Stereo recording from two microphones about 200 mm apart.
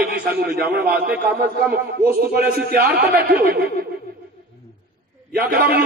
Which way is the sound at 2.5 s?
50° right (ahead or behind).